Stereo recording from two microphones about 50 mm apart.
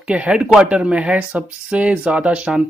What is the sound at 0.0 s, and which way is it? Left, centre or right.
Speech, right.